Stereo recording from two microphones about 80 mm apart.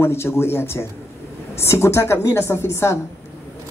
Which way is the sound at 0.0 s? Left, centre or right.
Left.